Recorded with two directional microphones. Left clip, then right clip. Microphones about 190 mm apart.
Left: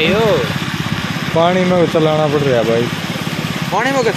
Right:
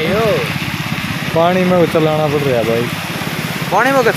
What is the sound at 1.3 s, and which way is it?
Speech, 5° left (ahead or behind).